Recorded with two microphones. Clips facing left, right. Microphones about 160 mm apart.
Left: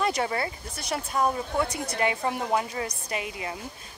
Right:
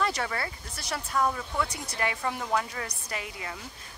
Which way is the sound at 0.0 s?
20° left (ahead or behind).